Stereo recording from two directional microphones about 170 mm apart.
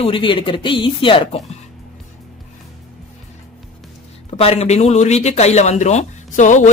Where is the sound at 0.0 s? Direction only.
30° left (ahead or behind).